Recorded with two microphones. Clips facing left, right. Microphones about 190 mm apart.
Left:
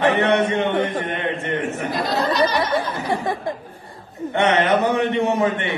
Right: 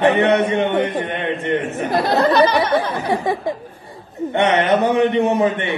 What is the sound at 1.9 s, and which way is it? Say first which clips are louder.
Speech: right 8 dB; 60° right (ahead or behind).